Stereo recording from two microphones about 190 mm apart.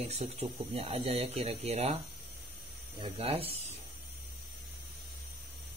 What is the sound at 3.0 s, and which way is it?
Speech, 30° right (ahead or behind).